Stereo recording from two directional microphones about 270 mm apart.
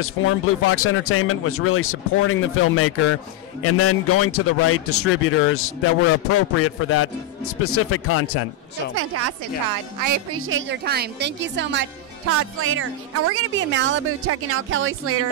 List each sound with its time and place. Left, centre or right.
0.0 s speech: left
8.9 s a woman's voice: right
10.0 s speech: right
10.4 s a woman's voice: right
12.3 s speech: right